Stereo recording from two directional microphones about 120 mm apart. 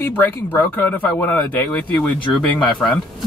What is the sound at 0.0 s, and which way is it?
Speech, 15° left (ahead or behind).